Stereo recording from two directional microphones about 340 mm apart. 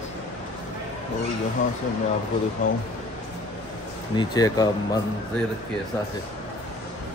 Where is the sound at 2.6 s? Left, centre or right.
Left.